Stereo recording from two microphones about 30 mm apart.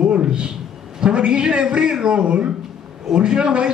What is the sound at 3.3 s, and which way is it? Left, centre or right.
Speech, right.